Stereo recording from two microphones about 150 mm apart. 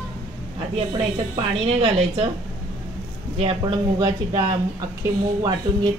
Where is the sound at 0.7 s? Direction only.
40° right (ahead or behind).